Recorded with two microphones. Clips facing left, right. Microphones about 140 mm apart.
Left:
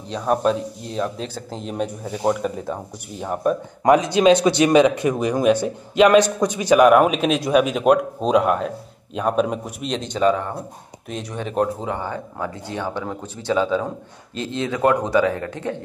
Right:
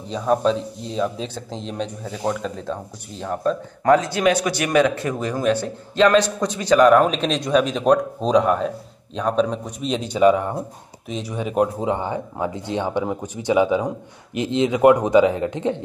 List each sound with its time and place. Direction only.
0.2 s speech: 5° left (ahead or behind); by 10.5 s 15° right (ahead or behind)
11.1 s speech: centre (ahead or behind); by 15.8 s 20° right (ahead or behind)